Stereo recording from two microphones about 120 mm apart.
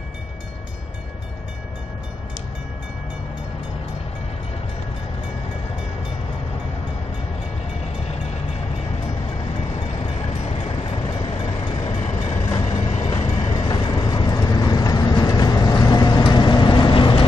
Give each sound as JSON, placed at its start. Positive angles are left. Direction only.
{"t": 7.8, "sound": "train", "side_deg": 60}
{"t": 9.5, "sound": "vehicle", "side_deg": 50}
{"t": 12.2, "sound": "train", "side_deg": 50}
{"t": 13.2, "sound": "vehicle", "side_deg": 50}